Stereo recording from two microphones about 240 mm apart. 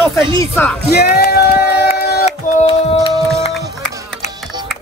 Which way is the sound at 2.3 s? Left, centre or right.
Left.